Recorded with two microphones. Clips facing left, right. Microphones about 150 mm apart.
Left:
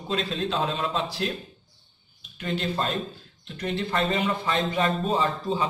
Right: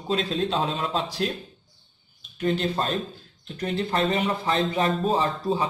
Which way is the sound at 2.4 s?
40° right (ahead or behind).